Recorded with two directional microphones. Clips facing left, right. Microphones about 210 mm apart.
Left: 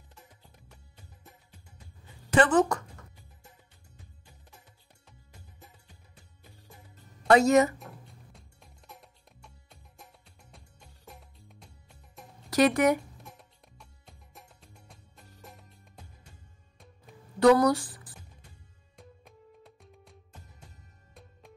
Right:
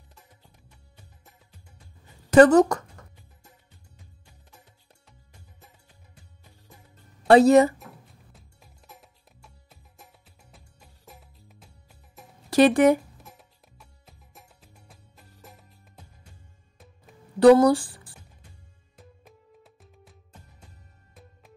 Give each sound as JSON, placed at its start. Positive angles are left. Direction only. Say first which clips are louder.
{"t": 2.3, "sound": "speech", "louder": "right 8 dB", "side_deg": -40}
{"t": 7.2, "sound": "speech", "louder": "right 5 dB", "side_deg": -30}
{"t": 7.8, "sound": "music", "louder": "even", "side_deg": 0}
{"t": 12.4, "sound": "speech", "louder": "right 6 dB", "side_deg": -30}
{"t": 13.2, "sound": "music", "louder": "even", "side_deg": 0}
{"t": 17.4, "sound": "speech", "louder": "right 6 dB", "side_deg": -30}
{"t": 18.9, "sound": "music", "louder": "even", "side_deg": 0}